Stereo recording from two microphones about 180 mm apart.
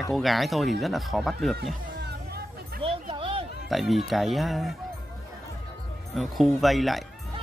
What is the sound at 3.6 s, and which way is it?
Speech, centre (ahead or behind).